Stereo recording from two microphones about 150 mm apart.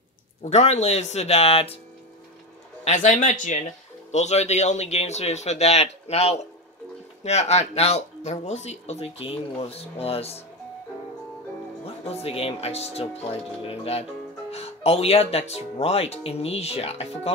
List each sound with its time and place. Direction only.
0.4 s speech: 50° left (ahead or behind)
2.8 s speech: 55° left (ahead or behind)
11.8 s speech: 40° left (ahead or behind)